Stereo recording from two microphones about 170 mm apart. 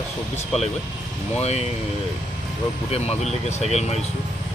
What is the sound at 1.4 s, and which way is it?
Speech, 40° left (ahead or behind).